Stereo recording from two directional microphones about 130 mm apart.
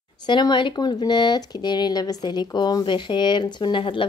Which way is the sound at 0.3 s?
35° left (ahead or behind).